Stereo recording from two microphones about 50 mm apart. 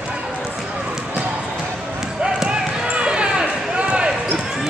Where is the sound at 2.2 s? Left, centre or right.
Centre.